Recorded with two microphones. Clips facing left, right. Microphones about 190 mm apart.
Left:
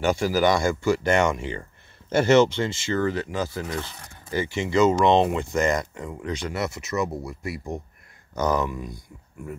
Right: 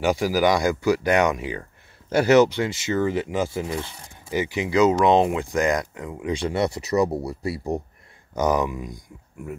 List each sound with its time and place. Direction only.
0.0 s speech: 15° right (ahead or behind)
6.5 s speech: 30° right (ahead or behind)
8.4 s speech: 15° right (ahead or behind)